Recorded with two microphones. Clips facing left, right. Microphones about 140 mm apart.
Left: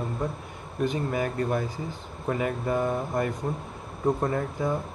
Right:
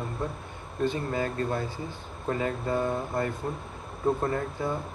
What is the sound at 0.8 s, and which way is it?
Speech, 15° left (ahead or behind).